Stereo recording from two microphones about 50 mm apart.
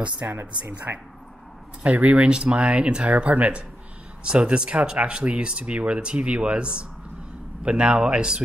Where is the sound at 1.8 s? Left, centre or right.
Right.